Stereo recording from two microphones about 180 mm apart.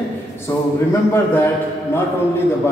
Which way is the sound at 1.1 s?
10° left (ahead or behind).